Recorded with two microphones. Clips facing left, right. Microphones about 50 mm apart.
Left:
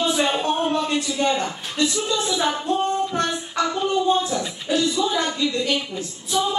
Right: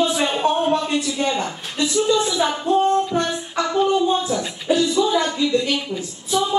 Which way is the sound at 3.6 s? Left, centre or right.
Centre.